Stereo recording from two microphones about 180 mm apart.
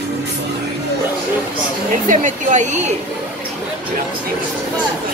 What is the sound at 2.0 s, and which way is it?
Speech, 45° right (ahead or behind).